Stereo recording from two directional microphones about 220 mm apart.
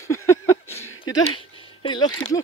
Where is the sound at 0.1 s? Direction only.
10° left (ahead or behind).